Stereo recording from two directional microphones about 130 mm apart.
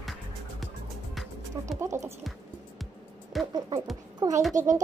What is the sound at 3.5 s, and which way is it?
Speech, 35° right (ahead or behind).